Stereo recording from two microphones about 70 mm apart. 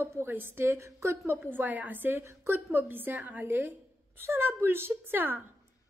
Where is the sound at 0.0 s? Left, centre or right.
Right.